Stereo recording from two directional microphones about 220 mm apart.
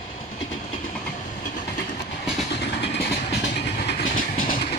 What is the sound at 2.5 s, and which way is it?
Vehicle, 50° left (ahead or behind).